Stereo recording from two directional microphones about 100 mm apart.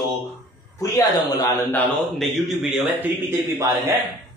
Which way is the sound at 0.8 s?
35° left (ahead or behind).